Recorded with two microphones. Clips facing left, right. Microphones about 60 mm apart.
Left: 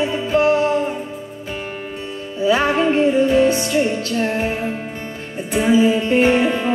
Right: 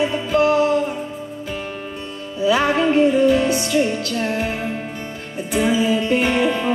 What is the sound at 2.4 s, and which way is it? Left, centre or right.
Music, left.